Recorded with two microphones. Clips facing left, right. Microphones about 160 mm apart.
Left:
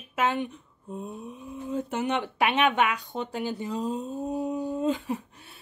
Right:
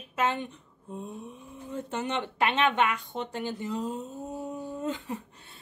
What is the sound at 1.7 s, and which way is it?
Speech, 10° left (ahead or behind).